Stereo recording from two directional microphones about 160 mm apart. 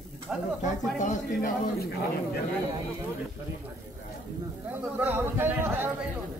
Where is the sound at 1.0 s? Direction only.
55° left (ahead or behind).